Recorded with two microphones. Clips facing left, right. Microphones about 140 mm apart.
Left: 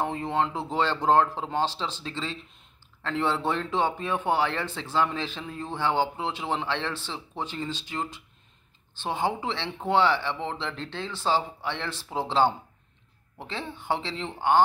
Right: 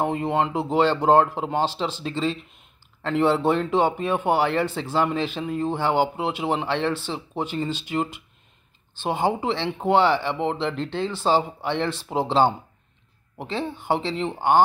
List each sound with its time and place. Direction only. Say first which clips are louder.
0.0 s speech: right 4 dB; 15° right (ahead or behind)